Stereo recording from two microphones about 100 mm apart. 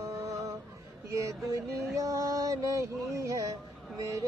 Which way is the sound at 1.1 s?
30° right (ahead or behind).